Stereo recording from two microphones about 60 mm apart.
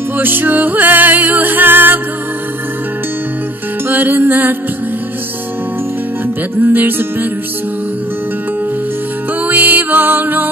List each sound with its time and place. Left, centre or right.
0.2 s music: right
3.9 s music: right
6.6 s music: right
9.5 s music: right